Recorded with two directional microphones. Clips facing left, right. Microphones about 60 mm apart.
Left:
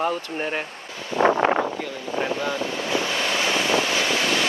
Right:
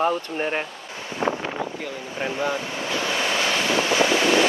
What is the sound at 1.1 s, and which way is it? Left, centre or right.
Wind noise, left.